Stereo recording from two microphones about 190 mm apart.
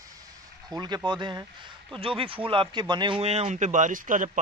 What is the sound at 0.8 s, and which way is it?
Speech, 20° right (ahead or behind).